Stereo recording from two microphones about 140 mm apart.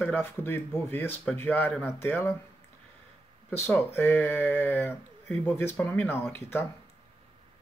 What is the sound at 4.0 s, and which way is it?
Speech, 15° left (ahead or behind).